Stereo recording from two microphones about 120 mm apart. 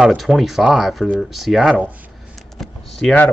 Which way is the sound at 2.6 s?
Centre (ahead or behind).